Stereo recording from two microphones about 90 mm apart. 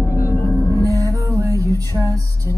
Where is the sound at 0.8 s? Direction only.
40° right (ahead or behind).